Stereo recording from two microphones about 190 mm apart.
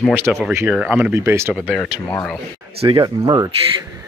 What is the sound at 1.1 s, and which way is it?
Speech, 15° right (ahead or behind).